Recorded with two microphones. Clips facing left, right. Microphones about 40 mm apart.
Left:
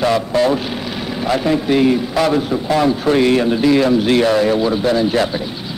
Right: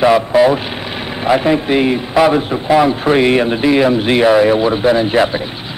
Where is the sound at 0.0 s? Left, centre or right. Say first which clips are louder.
Right 5 dB; right.